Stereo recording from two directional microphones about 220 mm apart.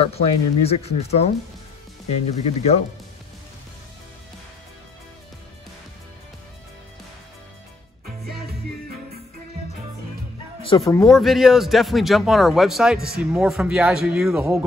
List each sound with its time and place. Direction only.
0.0 s speech: 25° left (ahead or behind)
10.7 s speech: 20° left (ahead or behind)
11.1 s speech: centre (ahead or behind)